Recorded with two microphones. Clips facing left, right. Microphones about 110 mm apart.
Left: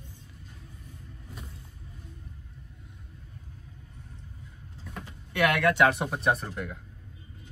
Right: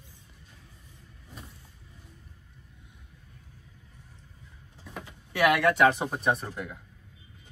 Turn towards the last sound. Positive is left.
turn(degrees=0)  # may be behind; listen again after turning